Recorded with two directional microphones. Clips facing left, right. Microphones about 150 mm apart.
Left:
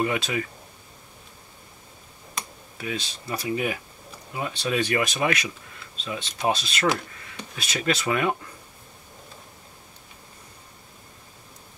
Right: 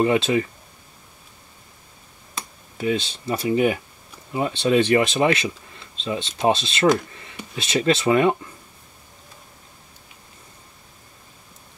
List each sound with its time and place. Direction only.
0.0 s speech: 30° right (ahead or behind)
2.8 s speech: 25° right (ahead or behind)